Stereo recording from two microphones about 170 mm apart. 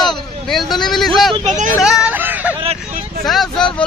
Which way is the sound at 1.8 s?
5° right (ahead or behind).